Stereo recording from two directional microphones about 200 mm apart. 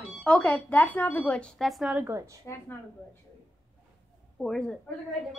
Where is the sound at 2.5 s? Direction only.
10° left (ahead or behind).